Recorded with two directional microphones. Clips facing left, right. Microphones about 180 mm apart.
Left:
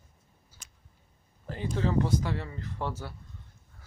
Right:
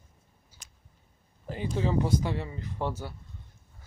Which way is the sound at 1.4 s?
15° right (ahead or behind).